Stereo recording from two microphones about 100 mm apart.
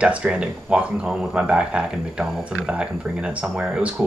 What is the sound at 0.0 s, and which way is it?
Speech, 10° right (ahead or behind).